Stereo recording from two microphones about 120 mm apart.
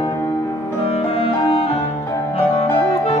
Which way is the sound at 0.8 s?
55° left (ahead or behind).